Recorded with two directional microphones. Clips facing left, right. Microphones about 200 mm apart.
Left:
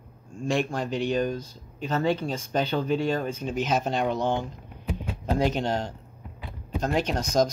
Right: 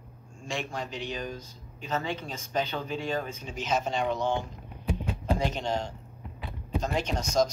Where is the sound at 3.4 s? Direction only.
55° left (ahead or behind).